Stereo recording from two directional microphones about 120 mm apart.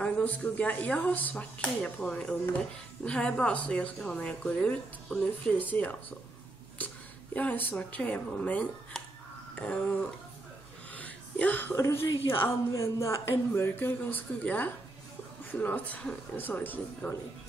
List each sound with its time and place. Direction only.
0.0 s a woman's voice: 10° left (ahead or behind)
7.3 s a woman's voice: 15° left (ahead or behind)
11.0 s a woman's voice: 15° left (ahead or behind)